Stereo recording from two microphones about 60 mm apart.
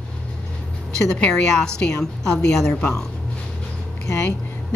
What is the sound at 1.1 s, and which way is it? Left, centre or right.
A woman's voice, centre.